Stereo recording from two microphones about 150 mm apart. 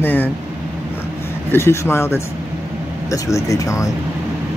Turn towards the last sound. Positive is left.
turn(degrees=20)  # may be behind; listen again after turning